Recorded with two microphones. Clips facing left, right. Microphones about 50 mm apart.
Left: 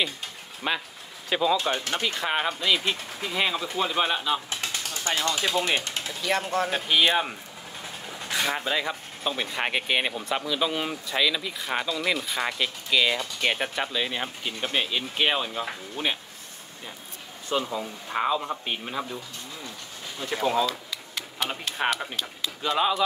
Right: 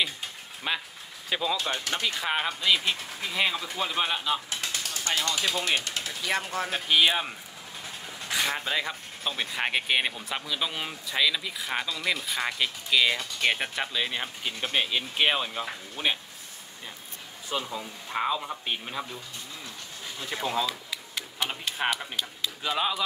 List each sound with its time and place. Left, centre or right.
0.6 s speech: centre
1.6 s speech: left
2.0 s speech: centre
5.0 s speech: left
6.2 s speech: centre
17.6 s speech: centre
20.2 s speech: centre
20.6 s a sound: centre
21.6 s speech: centre